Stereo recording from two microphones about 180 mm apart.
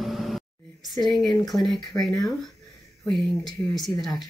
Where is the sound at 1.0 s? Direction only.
Centre (ahead or behind).